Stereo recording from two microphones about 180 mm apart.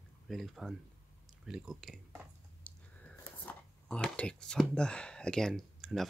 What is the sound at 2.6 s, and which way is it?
Speech, 10° left (ahead or behind).